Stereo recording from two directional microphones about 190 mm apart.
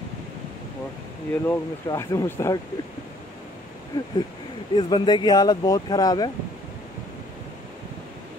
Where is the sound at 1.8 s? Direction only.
15° left (ahead or behind).